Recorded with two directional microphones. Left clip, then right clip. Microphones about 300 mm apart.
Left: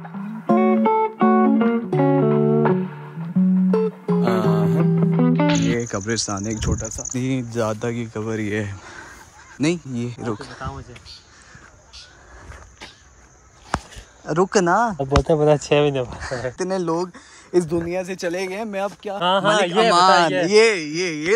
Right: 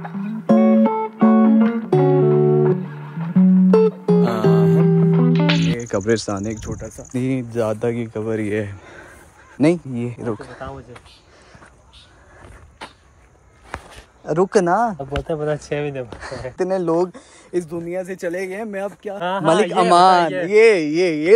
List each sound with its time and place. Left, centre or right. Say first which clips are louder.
0.0 s music: right 3 dB; centre
5.9 s speech: right 5 dB; centre
13.7 s a sound: left 7 dB; centre
14.2 s speech: right 1 dB; centre
15.2 s speech: left 6 dB; left
16.2 s speech: right 1 dB; centre
17.5 s speech: left 3 dB; centre
19.1 s speech: left 5 dB; left
19.4 s speech: right 4 dB; centre
20.7 s speech: right 6 dB; centre